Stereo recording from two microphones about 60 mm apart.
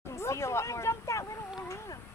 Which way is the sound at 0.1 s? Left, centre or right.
Left.